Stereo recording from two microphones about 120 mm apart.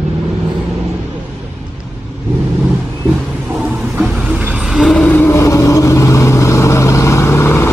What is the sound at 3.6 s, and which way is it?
Vehicle, 10° right (ahead or behind).